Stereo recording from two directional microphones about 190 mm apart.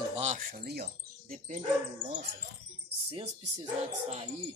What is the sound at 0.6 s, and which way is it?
Speech, 55° right (ahead or behind).